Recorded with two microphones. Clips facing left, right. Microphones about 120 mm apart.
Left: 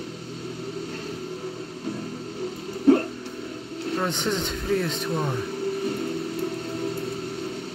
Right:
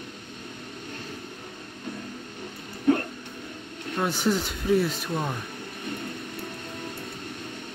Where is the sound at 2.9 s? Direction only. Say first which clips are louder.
Left 5 dB; 35° left (ahead or behind).